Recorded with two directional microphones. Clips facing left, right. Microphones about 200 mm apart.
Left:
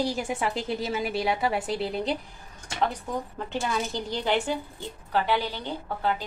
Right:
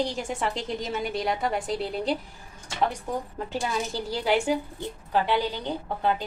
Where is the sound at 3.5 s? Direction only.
5° right (ahead or behind).